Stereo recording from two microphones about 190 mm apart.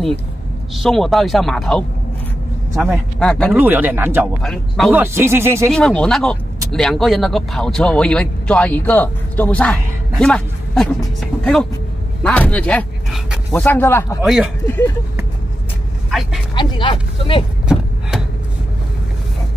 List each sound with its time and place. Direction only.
0.7 s speech: centre (ahead or behind)
3.5 s speech: 10° right (ahead or behind)
4.4 s speech: centre (ahead or behind)
4.9 s speech: 10° right (ahead or behind)
5.7 s speech: 5° left (ahead or behind)
14.2 s speech: centre (ahead or behind)
16.5 s speech: 25° left (ahead or behind)